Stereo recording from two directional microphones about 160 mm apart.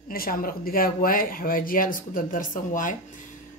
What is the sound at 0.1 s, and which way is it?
Speech, 65° left (ahead or behind).